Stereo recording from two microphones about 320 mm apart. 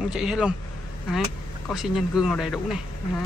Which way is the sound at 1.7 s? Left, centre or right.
Centre.